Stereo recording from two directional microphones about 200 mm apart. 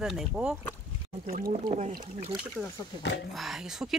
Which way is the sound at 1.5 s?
35° right (ahead or behind).